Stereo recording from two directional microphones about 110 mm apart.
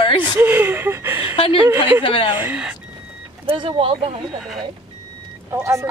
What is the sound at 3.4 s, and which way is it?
Speech, 50° right (ahead or behind).